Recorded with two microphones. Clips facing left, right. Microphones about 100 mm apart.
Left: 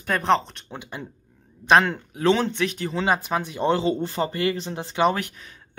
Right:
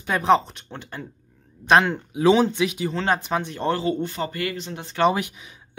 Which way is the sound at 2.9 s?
5° left (ahead or behind).